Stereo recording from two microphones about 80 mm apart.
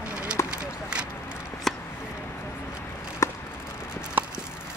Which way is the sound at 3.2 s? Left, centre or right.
Left.